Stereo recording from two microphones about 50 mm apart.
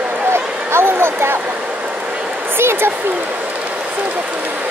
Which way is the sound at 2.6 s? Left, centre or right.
Right.